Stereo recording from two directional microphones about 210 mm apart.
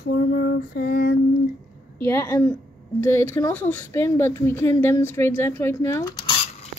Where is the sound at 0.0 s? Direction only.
50° left (ahead or behind).